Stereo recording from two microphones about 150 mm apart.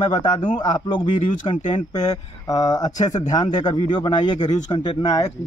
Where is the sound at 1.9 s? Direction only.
25° left (ahead or behind).